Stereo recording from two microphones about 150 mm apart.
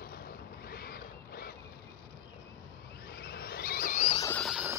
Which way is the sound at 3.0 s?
90° left.